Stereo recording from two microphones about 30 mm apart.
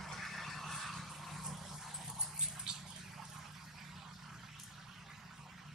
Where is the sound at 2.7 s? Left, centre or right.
Right.